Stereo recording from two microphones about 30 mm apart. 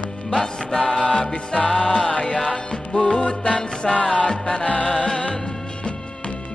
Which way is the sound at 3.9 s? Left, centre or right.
Left.